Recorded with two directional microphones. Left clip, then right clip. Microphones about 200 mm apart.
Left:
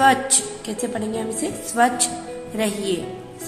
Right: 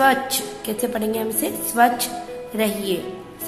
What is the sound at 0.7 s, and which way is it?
A woman's voice, 20° right (ahead or behind).